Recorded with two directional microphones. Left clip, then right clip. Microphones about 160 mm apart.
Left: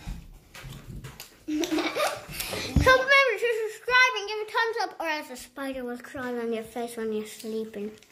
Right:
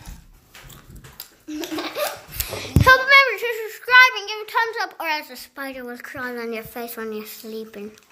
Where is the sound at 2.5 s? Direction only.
10° left (ahead or behind).